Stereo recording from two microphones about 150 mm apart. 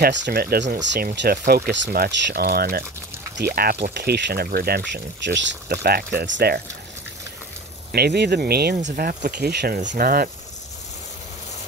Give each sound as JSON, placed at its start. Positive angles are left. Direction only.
{"t": 0.0, "sound": "speech", "side_deg": -90}
{"t": 7.9, "sound": "speech", "side_deg": -90}
{"t": 9.8, "sound": "speech", "side_deg": -75}